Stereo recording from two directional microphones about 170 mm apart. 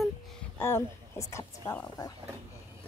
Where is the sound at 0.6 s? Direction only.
15° left (ahead or behind).